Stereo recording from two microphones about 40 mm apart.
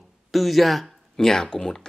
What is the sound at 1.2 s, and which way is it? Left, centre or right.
Speech, centre.